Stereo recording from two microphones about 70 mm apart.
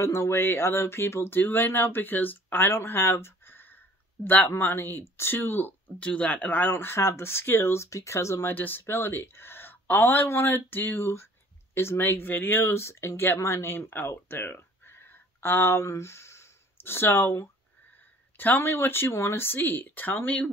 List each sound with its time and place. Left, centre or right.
0.0 s speech: left
2.7 s a sound: left
4.6 s speech: left
6.0 s speech: centre; by 8.5 s left
8.5 s speech: left
14.3 s a sound: left
18.4 s speech: left